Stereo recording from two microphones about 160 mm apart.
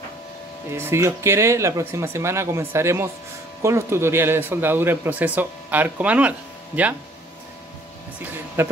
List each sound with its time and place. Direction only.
0.7 s speech: 15° right (ahead or behind)
8.6 s speech: 15° right (ahead or behind)